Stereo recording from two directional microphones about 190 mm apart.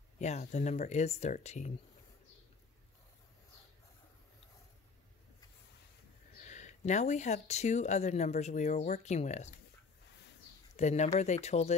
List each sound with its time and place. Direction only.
0.2 s speech: 35° left (ahead or behind)
6.4 s speech: 40° left (ahead or behind)
10.8 s speech: 35° left (ahead or behind)